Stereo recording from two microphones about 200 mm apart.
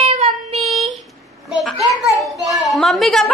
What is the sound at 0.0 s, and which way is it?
Child singing, 30° right (ahead or behind).